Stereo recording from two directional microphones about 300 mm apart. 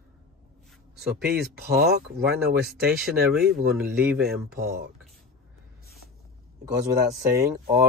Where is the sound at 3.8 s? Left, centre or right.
Centre.